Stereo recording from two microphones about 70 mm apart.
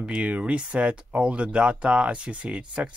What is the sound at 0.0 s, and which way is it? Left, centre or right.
Speech, centre.